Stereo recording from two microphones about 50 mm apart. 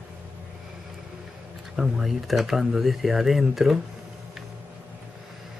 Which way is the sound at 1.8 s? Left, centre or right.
Centre.